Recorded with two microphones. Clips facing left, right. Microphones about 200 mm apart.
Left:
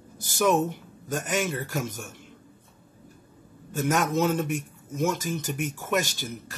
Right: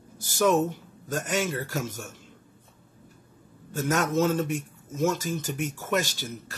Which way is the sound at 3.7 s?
15° left (ahead or behind).